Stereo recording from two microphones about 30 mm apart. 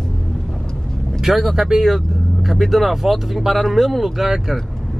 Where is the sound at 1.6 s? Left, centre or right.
Centre.